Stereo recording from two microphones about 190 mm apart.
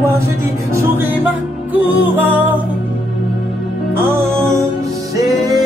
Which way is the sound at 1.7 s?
10° right (ahead or behind).